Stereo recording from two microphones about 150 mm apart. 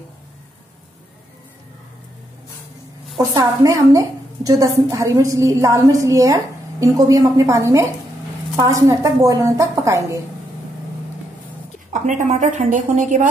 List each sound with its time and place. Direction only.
3.3 s a woman's voice: 20° right (ahead or behind)
11.9 s a woman's voice: 55° right (ahead or behind)